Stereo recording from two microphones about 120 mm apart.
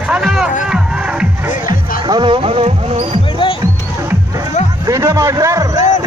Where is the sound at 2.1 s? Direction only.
40° right (ahead or behind).